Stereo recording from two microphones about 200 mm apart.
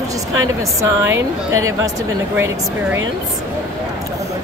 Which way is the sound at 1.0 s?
15° right (ahead or behind).